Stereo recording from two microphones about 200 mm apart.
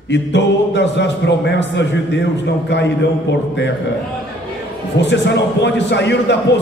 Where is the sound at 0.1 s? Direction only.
60° left (ahead or behind).